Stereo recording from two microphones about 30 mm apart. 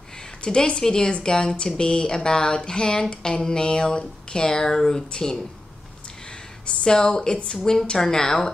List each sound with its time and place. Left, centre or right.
0.4 s speech: left
6.2 s a sound: left
6.8 s speech: left
7.5 s a woman's voice: centre